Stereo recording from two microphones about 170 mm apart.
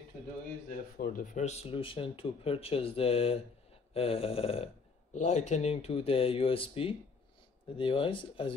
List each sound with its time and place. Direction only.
0.7 s speech: 55° left (ahead or behind); by 8.5 s 30° left (ahead or behind)